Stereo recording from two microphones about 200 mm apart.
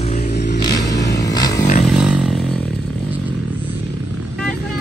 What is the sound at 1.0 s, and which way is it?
Vehicle, 60° left (ahead or behind).